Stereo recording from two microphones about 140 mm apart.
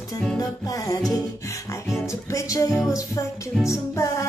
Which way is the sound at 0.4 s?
25° left (ahead or behind).